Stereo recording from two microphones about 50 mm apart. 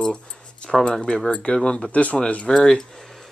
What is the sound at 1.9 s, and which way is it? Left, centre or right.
Speech, left.